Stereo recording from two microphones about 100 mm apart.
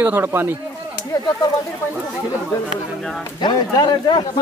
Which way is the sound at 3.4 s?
45° left (ahead or behind).